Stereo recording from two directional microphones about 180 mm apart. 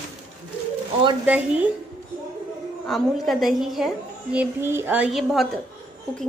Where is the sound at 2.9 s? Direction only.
Centre (ahead or behind).